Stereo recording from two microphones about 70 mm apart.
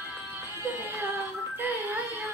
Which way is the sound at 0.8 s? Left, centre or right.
Right.